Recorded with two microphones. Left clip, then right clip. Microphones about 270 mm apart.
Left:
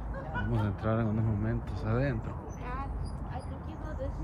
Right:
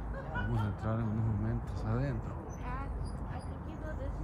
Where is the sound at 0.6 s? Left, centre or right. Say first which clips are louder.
Left 6 dB; centre.